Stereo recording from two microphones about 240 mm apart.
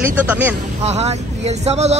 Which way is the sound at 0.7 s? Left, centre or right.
Right.